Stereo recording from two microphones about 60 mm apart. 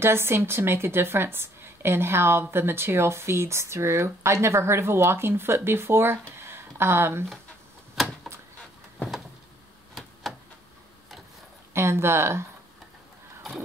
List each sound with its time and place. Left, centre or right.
0.0 s speech: right
8.0 s a sound: centre
11.7 s speech: right